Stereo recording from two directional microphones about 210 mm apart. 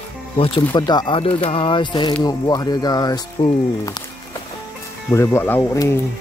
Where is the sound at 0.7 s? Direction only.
20° left (ahead or behind).